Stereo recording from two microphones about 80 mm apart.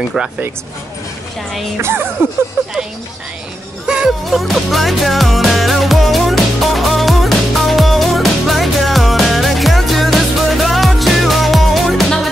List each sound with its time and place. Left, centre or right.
1.8 s speech: right
2.6 s music: right
3.8 s music: centre